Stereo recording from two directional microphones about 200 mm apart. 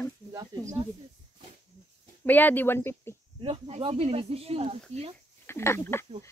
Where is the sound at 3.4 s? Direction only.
25° right (ahead or behind).